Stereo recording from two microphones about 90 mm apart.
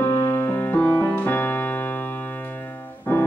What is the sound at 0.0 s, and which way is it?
Music, 20° left (ahead or behind).